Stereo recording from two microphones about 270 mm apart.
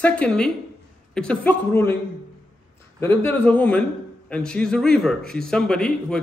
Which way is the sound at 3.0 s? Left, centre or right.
Centre.